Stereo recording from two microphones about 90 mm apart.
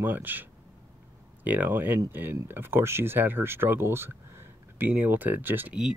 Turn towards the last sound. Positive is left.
turn(degrees=-20)  # may be behind; listen again after turning